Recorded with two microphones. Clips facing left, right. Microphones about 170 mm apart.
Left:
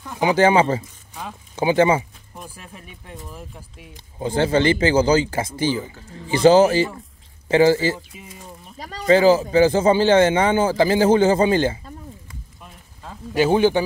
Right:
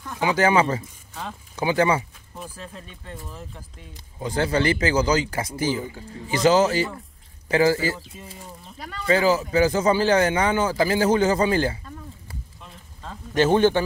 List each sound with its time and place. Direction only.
0.0 s speech: 20° left (ahead or behind)
2.5 s speech: 10° left (ahead or behind)
4.2 s speech: 25° left (ahead or behind)
8.7 s speech: 35° left (ahead or behind)
13.0 s speech: 10° left (ahead or behind)